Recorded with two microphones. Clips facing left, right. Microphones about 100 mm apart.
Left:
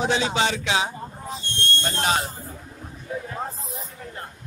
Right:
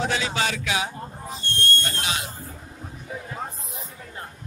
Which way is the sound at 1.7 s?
25° left (ahead or behind).